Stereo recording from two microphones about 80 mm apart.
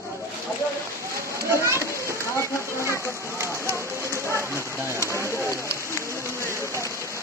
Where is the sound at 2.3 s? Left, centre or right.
Left.